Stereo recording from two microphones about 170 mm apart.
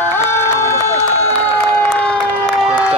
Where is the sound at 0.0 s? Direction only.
15° left (ahead or behind).